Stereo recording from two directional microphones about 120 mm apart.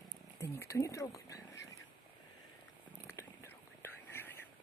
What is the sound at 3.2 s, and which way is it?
Whispering, 20° left (ahead or behind).